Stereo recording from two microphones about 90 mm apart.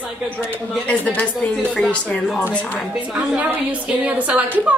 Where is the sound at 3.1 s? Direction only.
15° right (ahead or behind).